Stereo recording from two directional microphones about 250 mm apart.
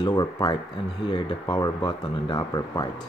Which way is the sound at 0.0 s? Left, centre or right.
Centre.